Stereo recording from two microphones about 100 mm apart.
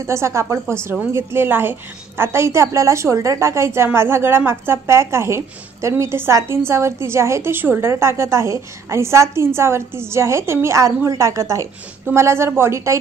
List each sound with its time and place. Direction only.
0.0 s a woman's voice: 30° right (ahead or behind)